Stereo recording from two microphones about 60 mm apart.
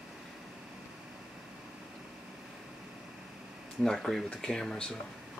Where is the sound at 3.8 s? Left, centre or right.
Centre.